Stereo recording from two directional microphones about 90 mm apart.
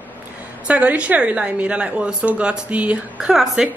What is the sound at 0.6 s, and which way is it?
A woman's voice, 15° right (ahead or behind).